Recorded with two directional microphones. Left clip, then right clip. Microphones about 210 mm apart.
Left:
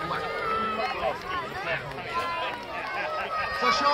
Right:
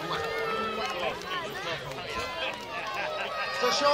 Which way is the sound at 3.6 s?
50° left (ahead or behind).